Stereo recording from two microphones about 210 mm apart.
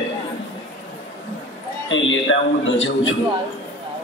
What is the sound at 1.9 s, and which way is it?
Speech, 65° left (ahead or behind).